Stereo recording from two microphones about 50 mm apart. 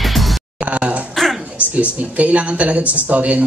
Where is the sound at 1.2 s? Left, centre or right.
Centre.